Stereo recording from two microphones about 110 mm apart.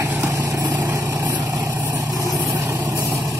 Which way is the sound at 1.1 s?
15° right (ahead or behind).